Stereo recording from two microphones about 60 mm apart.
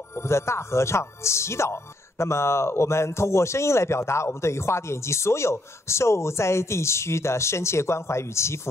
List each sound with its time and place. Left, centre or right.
0.1 s speech: left